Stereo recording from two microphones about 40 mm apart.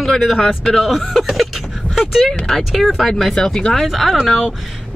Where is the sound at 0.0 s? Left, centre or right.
Centre.